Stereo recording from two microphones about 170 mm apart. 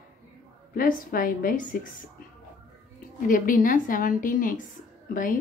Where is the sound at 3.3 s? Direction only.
55° left (ahead or behind).